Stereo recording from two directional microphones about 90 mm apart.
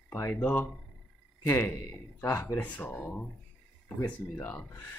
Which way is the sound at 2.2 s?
30° left (ahead or behind).